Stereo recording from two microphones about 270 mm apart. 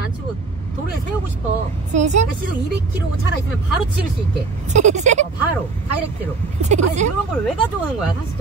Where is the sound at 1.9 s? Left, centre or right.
Right.